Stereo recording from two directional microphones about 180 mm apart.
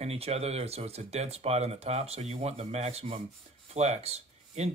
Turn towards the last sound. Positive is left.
turn(degrees=-35)  # may be behind; listen again after turning